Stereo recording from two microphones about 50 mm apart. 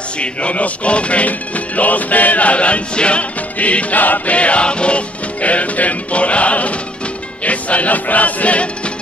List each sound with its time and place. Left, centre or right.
0.2 s music: left